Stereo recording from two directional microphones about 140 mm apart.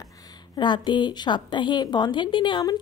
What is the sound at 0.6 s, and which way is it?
A woman's voice, 35° left (ahead or behind).